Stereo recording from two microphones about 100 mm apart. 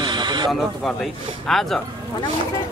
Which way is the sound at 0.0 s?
50° right (ahead or behind).